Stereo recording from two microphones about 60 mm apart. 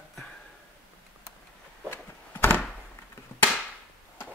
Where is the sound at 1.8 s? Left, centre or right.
Left.